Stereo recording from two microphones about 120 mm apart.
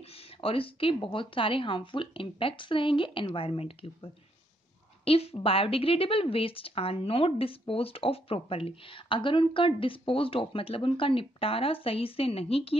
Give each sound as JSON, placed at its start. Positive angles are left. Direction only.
{"t": 0.0, "sound": "a woman's voice", "side_deg": 55}